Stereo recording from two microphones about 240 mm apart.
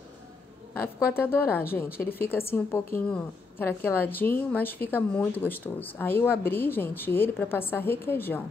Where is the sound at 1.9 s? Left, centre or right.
Left.